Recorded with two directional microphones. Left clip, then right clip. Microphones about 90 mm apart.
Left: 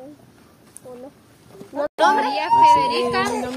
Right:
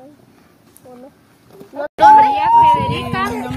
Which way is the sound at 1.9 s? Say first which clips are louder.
Right 10 dB; 25° left (ahead or behind).